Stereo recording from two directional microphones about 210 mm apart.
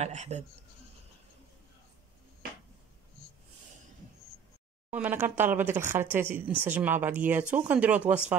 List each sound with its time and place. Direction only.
0.0 s speech: 35° right (ahead or behind)
4.9 s speech: 10° right (ahead or behind)